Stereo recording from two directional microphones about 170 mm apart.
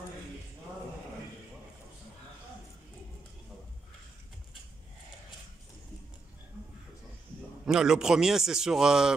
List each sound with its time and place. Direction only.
7.6 s a man's voice: 5° right (ahead or behind)